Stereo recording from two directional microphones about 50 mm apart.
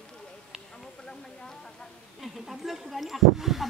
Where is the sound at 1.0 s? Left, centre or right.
Centre.